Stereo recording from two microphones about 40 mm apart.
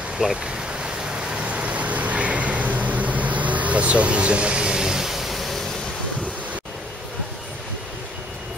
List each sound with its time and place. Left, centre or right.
0.2 s vehicle: centre